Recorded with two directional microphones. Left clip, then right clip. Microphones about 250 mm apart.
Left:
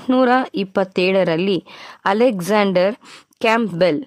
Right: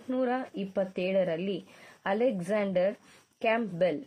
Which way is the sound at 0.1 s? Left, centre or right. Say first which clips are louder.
Left 15 dB; left.